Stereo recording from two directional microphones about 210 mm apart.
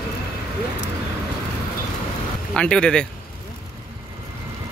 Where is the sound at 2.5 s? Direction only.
5° left (ahead or behind).